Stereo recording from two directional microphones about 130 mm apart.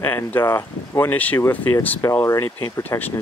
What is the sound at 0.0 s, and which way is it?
Speech, 15° left (ahead or behind).